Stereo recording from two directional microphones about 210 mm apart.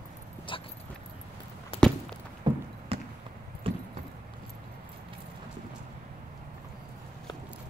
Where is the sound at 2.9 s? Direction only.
25° right (ahead or behind).